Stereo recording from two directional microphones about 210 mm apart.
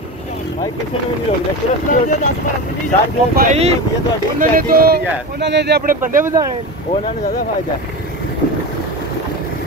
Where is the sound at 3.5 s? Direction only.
30° right (ahead or behind).